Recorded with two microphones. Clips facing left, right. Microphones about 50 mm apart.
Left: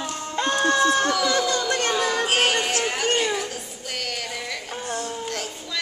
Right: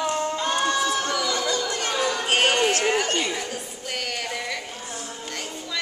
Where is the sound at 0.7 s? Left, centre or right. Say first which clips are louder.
Left 4 dB; left.